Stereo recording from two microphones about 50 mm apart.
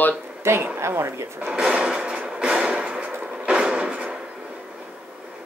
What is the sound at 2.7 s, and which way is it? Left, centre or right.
Hammer, right.